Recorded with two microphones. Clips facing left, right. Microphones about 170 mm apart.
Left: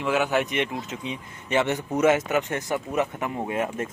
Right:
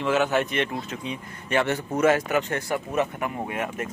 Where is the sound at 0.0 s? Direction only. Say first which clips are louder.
Right 1 dB; 10° left (ahead or behind).